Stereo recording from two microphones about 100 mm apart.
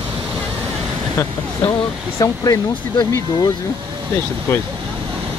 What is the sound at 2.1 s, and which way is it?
Speech, 35° left (ahead or behind).